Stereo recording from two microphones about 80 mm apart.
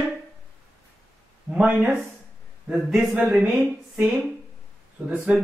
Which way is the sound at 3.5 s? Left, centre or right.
Centre.